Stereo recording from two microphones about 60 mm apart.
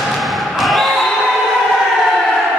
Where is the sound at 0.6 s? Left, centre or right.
Centre.